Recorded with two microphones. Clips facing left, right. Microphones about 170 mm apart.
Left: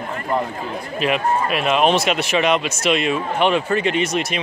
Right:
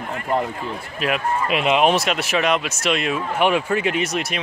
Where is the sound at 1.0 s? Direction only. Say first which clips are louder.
Left 2 dB; centre (ahead or behind).